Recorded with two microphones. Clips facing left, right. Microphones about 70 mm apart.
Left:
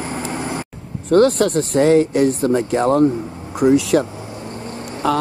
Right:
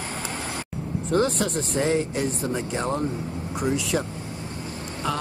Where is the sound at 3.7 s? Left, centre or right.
Left.